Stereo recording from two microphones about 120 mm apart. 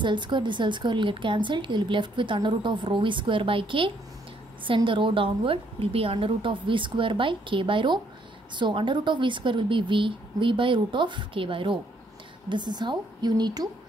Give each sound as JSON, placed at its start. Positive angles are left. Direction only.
{"t": 0.0, "sound": "a woman's voice", "side_deg": -40}